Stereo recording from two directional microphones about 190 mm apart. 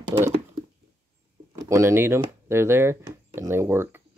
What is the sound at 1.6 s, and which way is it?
Speech, 15° right (ahead or behind).